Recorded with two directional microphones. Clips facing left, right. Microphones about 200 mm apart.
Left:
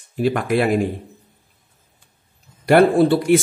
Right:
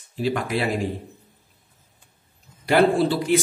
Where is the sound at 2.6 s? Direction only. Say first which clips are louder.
Left 5 dB; 55° left (ahead or behind).